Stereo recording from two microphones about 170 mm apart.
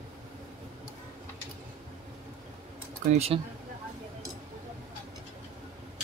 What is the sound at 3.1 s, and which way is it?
Speech, 40° right (ahead or behind).